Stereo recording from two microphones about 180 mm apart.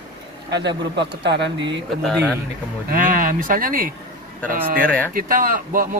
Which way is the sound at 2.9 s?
50° right (ahead or behind).